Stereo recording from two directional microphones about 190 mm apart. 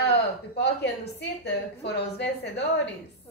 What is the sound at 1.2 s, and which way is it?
A woman's voice, 60° left (ahead or behind).